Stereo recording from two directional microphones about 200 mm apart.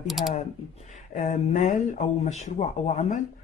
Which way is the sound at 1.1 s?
35° left (ahead or behind).